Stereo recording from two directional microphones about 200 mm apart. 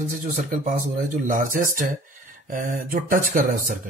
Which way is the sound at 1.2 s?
40° right (ahead or behind).